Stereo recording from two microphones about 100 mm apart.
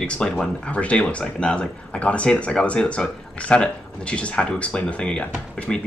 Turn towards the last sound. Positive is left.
turn(degrees=10)  # may be behind; listen again after turning